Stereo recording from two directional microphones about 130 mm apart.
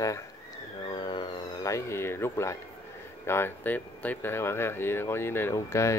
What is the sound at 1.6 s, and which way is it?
Speech, 20° left (ahead or behind).